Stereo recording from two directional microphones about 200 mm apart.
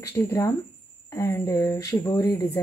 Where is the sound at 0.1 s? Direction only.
15° left (ahead or behind).